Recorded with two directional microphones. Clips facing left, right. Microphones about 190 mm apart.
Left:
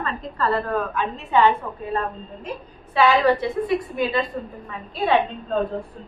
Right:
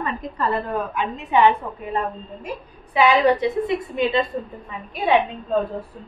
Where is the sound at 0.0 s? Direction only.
15° right (ahead or behind).